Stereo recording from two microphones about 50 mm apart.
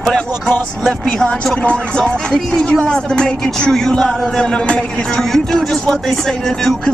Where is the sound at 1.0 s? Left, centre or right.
Centre.